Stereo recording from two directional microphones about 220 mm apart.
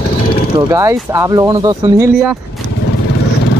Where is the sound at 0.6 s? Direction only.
15° right (ahead or behind).